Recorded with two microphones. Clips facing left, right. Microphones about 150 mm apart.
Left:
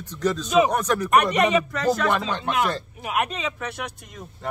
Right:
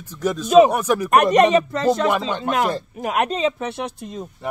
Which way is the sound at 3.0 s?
40° right (ahead or behind).